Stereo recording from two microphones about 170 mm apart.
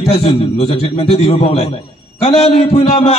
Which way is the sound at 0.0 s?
35° left (ahead or behind).